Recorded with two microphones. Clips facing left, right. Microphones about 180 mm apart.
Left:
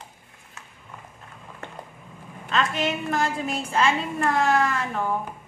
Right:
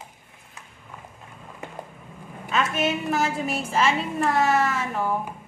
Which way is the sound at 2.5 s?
5° right (ahead or behind).